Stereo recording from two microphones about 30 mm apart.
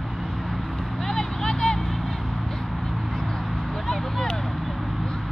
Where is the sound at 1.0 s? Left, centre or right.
Centre.